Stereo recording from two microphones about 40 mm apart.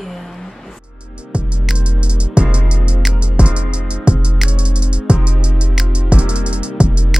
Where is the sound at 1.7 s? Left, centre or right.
Right.